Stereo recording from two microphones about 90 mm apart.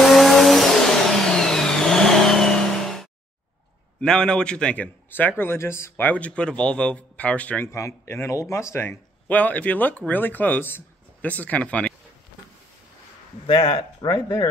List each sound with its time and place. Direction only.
0.0 s vehicle: centre (ahead or behind)
4.0 s speech: 10° left (ahead or behind)
7.7 s speech: 30° left (ahead or behind)
9.3 s speech: 15° left (ahead or behind)
13.5 s speech: 75° left (ahead or behind); by 14.5 s 55° left (ahead or behind)